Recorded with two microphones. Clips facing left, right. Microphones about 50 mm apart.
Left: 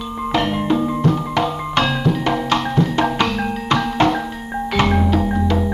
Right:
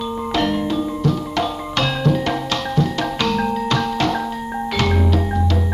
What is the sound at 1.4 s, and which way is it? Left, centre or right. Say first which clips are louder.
Music: left 2 dB; centre.